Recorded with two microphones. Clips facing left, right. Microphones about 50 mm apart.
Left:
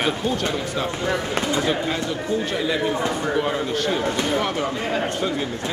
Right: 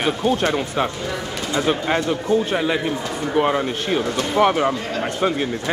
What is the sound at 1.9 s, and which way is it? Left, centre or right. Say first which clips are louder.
Speech: right 5 dB; right.